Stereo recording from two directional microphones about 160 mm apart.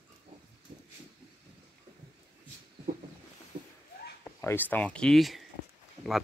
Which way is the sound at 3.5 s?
60° right (ahead or behind).